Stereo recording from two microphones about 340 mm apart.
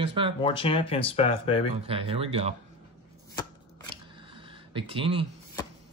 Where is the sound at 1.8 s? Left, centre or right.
Centre.